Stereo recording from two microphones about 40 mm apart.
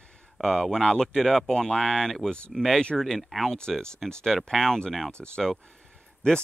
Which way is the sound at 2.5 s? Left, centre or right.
Centre.